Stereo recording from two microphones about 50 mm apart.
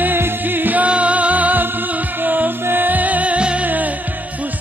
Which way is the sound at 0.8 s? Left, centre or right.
Right.